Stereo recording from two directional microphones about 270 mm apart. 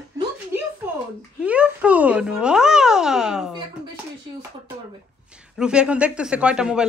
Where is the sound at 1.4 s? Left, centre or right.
Centre.